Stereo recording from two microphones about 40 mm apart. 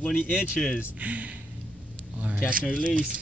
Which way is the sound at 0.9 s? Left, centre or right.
Right.